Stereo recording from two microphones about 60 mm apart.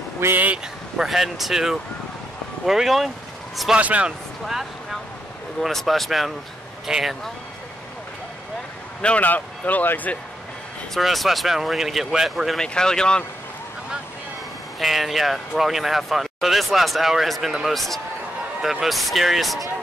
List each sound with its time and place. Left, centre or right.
0.2 s speech: right
0.9 s speech: centre
3.7 s speech: right
5.6 s speech: centre
9.0 s speech: left
11.0 s speech: centre
12.5 s speech: centre
14.8 s speech: centre